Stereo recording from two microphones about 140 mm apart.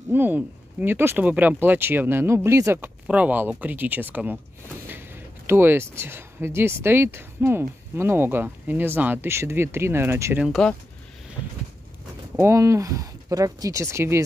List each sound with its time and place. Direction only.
0.1 s speech: 15° right (ahead or behind)
10.4 s speech: centre (ahead or behind)
12.4 s speech: 20° right (ahead or behind)